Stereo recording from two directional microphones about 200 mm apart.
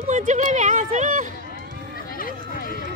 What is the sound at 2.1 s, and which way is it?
Run, 45° left (ahead or behind).